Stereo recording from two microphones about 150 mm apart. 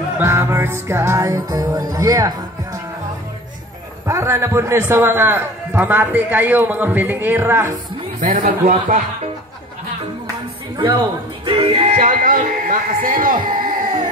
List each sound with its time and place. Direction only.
0.2 s music: 15° right (ahead or behind)
4.1 s a man's voice: 15° right (ahead or behind)
8.2 s speech: 60° right (ahead or behind)
10.8 s music: 30° right (ahead or behind); by 13.4 s 70° right (ahead or behind)
13.5 s a sound: 70° right (ahead or behind)